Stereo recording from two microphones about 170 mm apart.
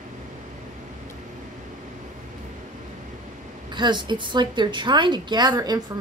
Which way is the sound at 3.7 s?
25° right (ahead or behind).